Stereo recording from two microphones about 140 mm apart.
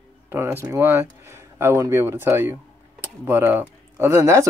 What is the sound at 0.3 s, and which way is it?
Speech, 15° right (ahead or behind).